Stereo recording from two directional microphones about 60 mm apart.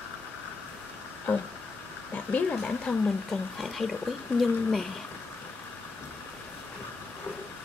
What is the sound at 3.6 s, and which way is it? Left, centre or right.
Speech, centre.